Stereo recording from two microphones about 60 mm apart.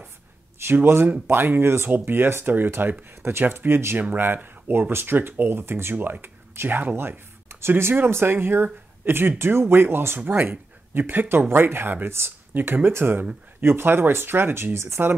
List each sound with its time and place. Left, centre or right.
0.8 s speech: right